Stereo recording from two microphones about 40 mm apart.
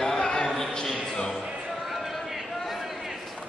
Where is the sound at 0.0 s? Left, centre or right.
Centre.